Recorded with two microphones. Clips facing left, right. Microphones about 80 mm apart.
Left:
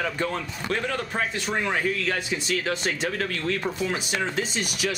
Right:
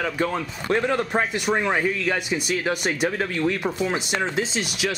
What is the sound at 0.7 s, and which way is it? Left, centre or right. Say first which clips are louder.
Speech: right 6 dB; right.